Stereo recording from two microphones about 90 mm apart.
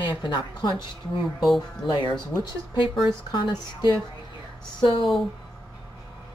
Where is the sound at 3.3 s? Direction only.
55° left (ahead or behind).